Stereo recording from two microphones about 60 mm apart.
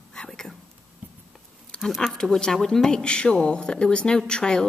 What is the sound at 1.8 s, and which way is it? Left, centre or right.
A woman's voice, centre.